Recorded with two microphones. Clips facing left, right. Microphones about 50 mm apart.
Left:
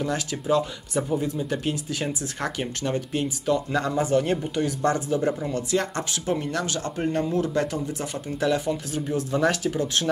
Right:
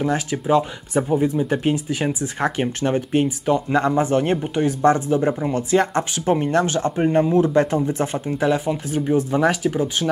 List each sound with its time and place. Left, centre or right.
0.0 s speech: right
8.4 s speech: right